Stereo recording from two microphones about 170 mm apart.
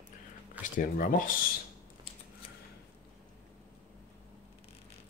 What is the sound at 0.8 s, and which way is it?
Speech, 55° left (ahead or behind).